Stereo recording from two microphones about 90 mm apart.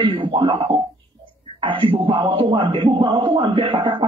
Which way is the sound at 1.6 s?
70° right (ahead or behind).